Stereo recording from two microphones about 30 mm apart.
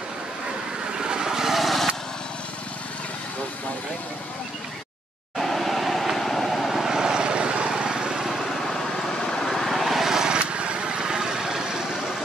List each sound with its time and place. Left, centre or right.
0.9 s vehicle: right
1.6 s vehicle: centre
5.4 s vehicle: centre
6.8 s vehicle: centre
9.2 s vehicle: left
9.7 s vehicle: centre
10.1 s vehicle: right
10.5 s vehicle: right; by 11.6 s centre